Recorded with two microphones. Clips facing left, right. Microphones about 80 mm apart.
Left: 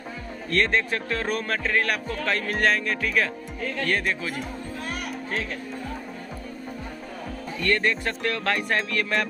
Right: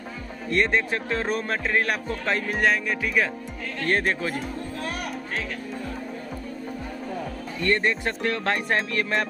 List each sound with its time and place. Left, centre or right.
0.5 s speech: centre
2.5 s music: centre
4.0 s speech: right
7.6 s speech: right